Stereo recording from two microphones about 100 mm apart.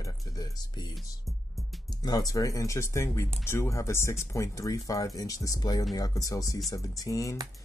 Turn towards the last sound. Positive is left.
turn(degrees=35)  # may be behind; listen again after turning